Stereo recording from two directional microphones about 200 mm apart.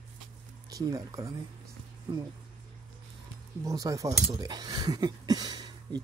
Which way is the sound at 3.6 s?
15° right (ahead or behind).